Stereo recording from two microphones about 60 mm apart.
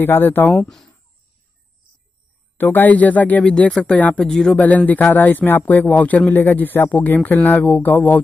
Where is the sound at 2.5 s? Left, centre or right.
Left.